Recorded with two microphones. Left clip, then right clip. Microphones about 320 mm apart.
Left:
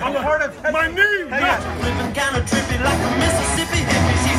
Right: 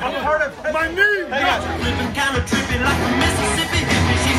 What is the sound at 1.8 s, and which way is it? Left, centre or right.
Music, left.